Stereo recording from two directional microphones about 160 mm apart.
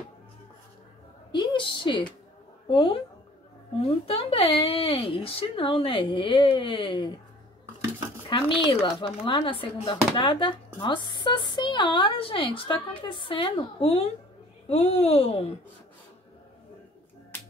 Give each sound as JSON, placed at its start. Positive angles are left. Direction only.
{"t": 1.3, "sound": "a woman's voice", "side_deg": 30}
{"t": 8.3, "sound": "speech", "side_deg": 30}